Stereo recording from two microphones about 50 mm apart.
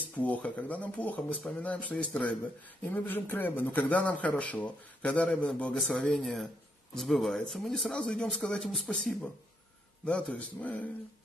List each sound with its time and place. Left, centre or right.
0.2 s a man's voice: left
2.8 s a man's voice: left
5.9 s speech: centre
7.9 s speech: centre
10.3 s speech: left